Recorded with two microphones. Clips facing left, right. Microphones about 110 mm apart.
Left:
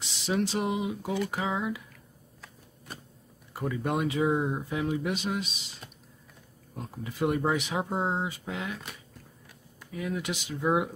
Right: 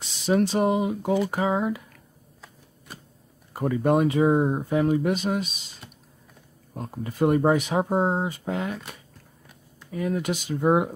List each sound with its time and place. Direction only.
0.3 s speech: 45° right (ahead or behind)
3.5 s speech: 50° right (ahead or behind)
6.7 s speech: 45° right (ahead or behind)